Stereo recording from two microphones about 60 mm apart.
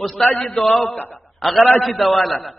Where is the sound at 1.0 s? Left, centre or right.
Left.